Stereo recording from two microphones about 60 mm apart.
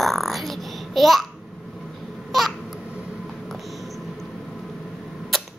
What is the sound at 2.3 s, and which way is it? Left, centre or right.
Babbling, centre.